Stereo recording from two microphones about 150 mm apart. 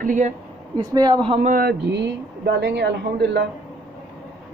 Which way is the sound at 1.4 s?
80° right.